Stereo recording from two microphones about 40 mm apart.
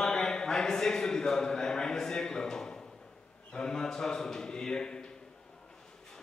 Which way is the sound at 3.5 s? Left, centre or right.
Centre.